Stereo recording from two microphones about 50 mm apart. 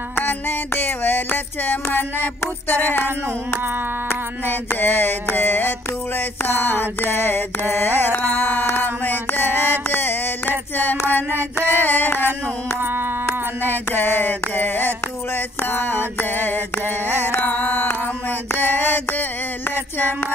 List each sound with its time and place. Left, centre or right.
0.1 s music: left
2.7 s mantra: left
4.1 s mantra: left
8.6 s a sound: left
13.6 s mantra: left
18.5 s music: left